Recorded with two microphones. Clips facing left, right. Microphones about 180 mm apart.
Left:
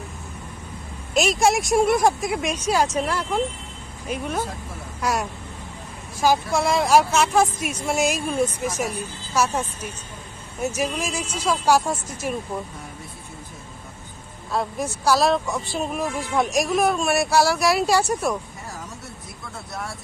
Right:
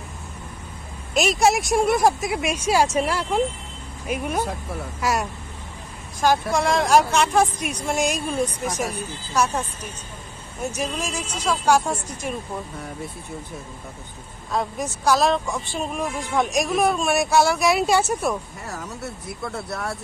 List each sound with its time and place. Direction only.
1.1 s speech: centre (ahead or behind)
5.0 s speech: centre (ahead or behind)
14.5 s speech: centre (ahead or behind)
19.4 s speech: 65° right (ahead or behind)